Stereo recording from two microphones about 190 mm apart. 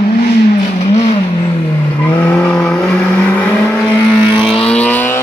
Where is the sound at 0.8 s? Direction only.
35° left (ahead or behind).